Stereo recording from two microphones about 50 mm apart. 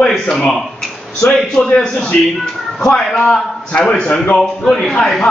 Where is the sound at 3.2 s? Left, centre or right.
Centre.